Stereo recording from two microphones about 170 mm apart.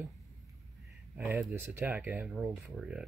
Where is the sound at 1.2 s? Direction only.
10° right (ahead or behind).